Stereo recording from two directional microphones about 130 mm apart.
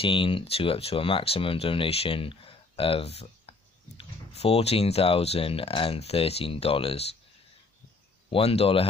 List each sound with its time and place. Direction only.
0.0 s speech: 40° left (ahead or behind)
8.3 s speech: 50° left (ahead or behind)